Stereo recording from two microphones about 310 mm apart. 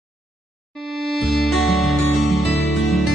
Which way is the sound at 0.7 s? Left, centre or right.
Centre.